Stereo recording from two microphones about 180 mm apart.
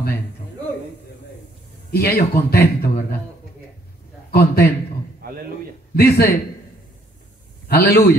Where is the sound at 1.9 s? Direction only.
60° left (ahead or behind).